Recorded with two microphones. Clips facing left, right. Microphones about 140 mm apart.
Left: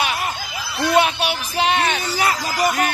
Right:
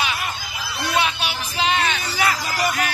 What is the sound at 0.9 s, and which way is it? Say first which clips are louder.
Speech: left 5 dB; 50° left (ahead or behind).